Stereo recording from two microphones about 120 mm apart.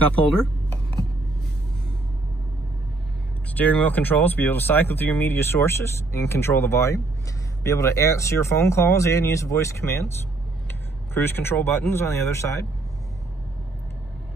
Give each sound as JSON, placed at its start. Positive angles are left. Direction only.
{"t": 0.0, "sound": "speech", "side_deg": 10}
{"t": 3.5, "sound": "speech", "side_deg": 15}